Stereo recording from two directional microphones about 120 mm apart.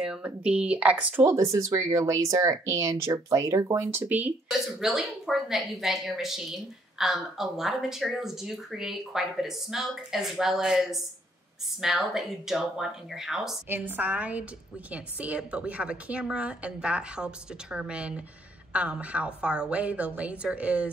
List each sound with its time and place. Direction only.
0.0 s a sound: 10° right (ahead or behind)
0.5 s speech: 10° right (ahead or behind)
4.5 s speech: centre (ahead or behind)
13.7 s a woman's voice: 15° right (ahead or behind)